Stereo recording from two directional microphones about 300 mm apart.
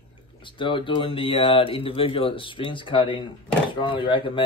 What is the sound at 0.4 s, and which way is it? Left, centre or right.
Speech, centre.